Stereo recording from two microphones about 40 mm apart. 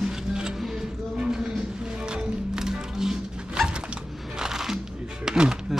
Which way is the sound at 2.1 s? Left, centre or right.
Centre.